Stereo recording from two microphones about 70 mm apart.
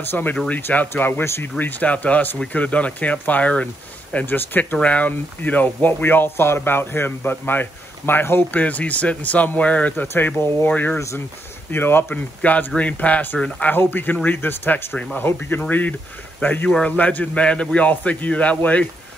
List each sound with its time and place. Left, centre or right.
0.1 s speech: left
1.6 s speech: left
8.5 s speech: left
12.4 s a man's voice: left